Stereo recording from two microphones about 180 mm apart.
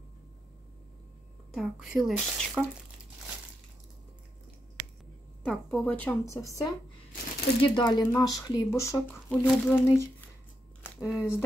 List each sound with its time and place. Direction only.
1.5 s speech: centre (ahead or behind)
5.4 s speech: 5° left (ahead or behind)
11.0 s speech: 5° right (ahead or behind)